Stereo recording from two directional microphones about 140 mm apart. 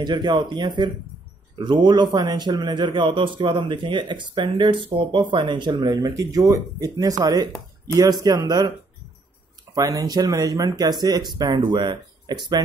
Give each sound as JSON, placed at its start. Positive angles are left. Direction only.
{"t": 0.0, "sound": "a man's voice", "side_deg": -30}
{"t": 9.8, "sound": "speech", "side_deg": -25}